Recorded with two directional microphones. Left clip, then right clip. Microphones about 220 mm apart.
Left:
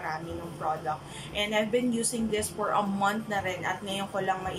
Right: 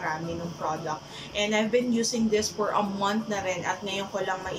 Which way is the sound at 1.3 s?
5° left (ahead or behind).